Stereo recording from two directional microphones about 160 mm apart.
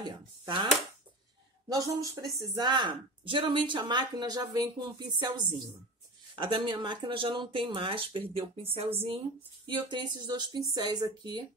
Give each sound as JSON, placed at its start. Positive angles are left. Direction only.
{"t": 0.0, "sound": "speech", "side_deg": -25}
{"t": 1.7, "sound": "speech", "side_deg": -20}
{"t": 9.7, "sound": "speech", "side_deg": -30}